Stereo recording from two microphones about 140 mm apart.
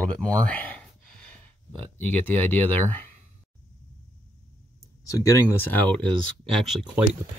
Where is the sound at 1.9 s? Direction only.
10° left (ahead or behind).